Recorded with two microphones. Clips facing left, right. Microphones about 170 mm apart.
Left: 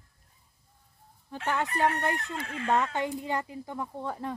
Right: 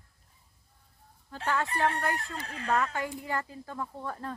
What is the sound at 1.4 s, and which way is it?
Speech, 20° left (ahead or behind).